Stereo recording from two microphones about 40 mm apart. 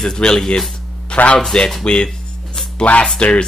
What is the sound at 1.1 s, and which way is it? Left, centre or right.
Speech, left.